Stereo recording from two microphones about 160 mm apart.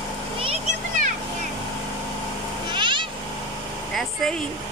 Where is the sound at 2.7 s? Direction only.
30° right (ahead or behind).